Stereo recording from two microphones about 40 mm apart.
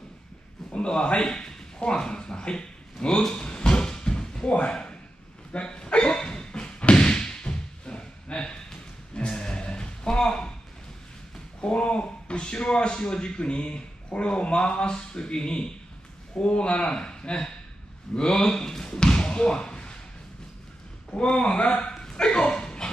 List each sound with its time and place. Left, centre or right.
0.7 s speech: left
3.4 s music: left
5.5 s slam: left
11.6 s speech: left
18.1 s basketball bounce: left
21.1 s speech: left
22.1 s a sound: left